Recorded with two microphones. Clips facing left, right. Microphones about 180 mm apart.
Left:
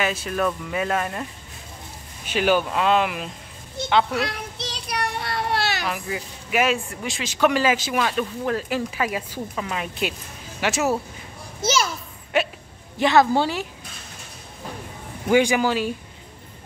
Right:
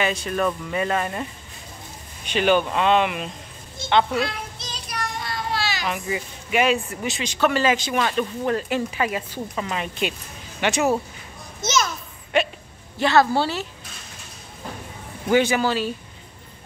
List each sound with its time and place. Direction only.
0.0 s speech: 5° left (ahead or behind)
2.2 s speech: 5° left (ahead or behind)
4.6 s child singing: 65° left (ahead or behind)
5.9 s speech: centre (ahead or behind)
7.3 s speech: 10° left (ahead or behind)
11.6 s a sound: 10° left (ahead or behind)
13.0 s a woman's voice: 15° left (ahead or behind)
15.2 s a woman's voice: 15° left (ahead or behind)